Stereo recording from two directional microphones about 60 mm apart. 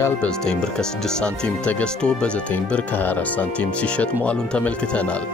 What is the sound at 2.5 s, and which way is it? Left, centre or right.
Speech, left.